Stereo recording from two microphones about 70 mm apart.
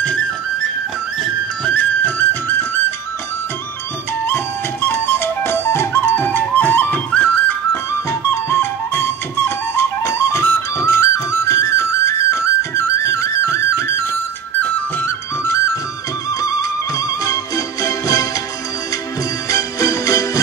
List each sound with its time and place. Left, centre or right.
1.7 s music: left
4.8 s music: left
8.1 s flute: left
15.0 s music: left
19.5 s music: left